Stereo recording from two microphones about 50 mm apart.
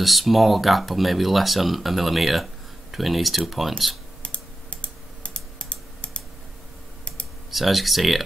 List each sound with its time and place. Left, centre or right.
0.0 s speech: centre
4.2 s computer keyboard: left
7.5 s speech: centre